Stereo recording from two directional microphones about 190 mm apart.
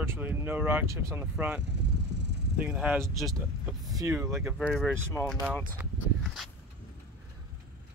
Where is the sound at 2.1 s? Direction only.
65° right (ahead or behind).